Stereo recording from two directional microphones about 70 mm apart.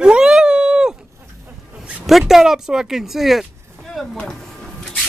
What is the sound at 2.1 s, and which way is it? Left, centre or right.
Speech, centre.